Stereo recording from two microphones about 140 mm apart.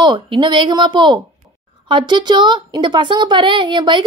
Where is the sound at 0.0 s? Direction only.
35° right (ahead or behind).